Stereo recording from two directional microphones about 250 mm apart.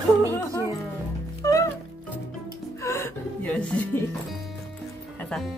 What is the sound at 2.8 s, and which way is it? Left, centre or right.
Music, centre.